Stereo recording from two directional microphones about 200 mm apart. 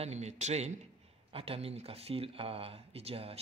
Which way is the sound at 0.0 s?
35° right (ahead or behind).